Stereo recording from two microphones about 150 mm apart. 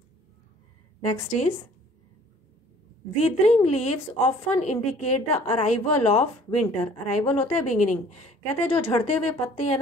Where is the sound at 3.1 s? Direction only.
45° left (ahead or behind).